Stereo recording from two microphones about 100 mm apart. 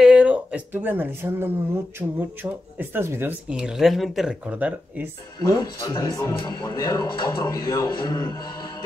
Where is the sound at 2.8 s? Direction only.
20° right (ahead or behind).